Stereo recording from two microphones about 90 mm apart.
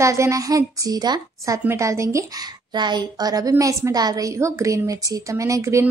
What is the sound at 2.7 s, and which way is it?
A woman's voice, 55° right (ahead or behind).